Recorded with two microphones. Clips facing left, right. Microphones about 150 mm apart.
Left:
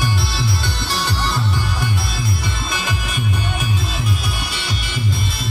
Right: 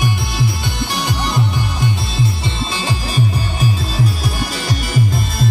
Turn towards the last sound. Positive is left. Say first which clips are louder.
# right 6 dB
turn(degrees=-40)  # may be behind; listen again after turning